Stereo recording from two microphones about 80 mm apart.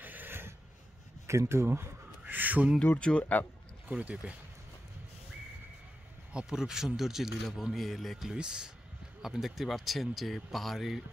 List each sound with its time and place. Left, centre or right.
0.0 s a sound: right
1.2 s speech: right; by 2.7 s centre
3.0 s speech: centre
3.9 s speech: centre
6.3 s a man's voice: centre